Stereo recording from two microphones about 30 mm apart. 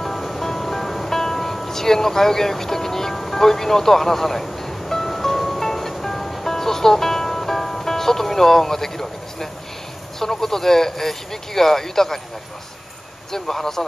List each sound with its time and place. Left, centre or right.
0.0 s music: centre
10.1 s a man's voice: centre
13.3 s a man's voice: centre